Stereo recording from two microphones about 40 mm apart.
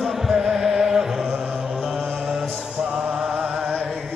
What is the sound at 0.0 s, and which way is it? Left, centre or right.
Music, centre.